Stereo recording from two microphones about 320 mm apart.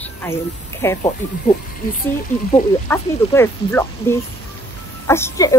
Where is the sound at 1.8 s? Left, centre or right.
Left.